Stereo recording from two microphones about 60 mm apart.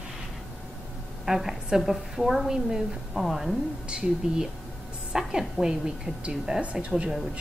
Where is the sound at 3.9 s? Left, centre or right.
Centre.